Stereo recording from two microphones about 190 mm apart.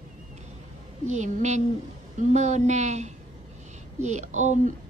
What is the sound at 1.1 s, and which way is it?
Speech, 40° right (ahead or behind).